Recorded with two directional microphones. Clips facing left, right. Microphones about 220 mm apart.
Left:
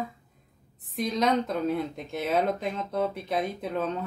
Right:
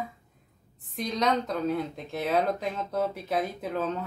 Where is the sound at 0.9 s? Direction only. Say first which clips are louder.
Left 2 dB; centre (ahead or behind).